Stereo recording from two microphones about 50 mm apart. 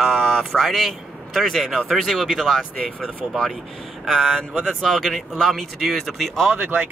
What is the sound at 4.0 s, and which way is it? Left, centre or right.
Speech, centre.